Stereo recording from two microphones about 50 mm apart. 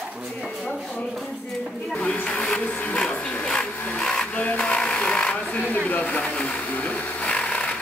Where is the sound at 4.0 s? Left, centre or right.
Centre.